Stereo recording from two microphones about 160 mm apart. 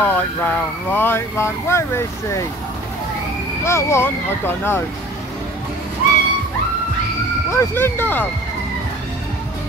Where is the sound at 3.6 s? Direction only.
15° left (ahead or behind).